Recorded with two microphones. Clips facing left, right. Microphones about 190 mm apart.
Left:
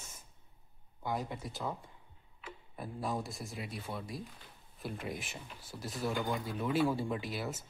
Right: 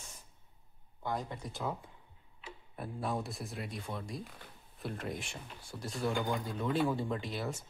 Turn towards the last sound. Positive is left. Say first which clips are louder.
# even
turn(degrees=5)  # may be behind; listen again after turning